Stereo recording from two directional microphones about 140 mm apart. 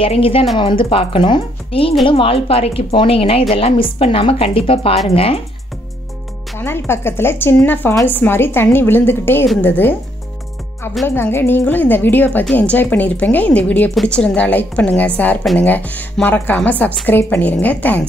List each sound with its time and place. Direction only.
0.0 s speech: 40° left (ahead or behind)
6.6 s a woman's voice: 15° left (ahead or behind)
11.1 s a woman's voice: 15° left (ahead or behind)